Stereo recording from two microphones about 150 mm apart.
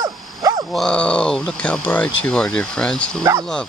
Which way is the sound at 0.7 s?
5° left (ahead or behind).